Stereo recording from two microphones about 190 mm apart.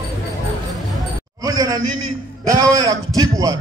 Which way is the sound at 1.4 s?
15° right (ahead or behind).